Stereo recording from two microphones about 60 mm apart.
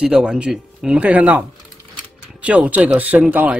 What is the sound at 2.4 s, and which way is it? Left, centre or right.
Speech, right.